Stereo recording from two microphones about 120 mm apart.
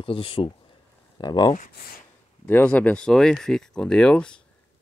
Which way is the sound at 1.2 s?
35° left (ahead or behind).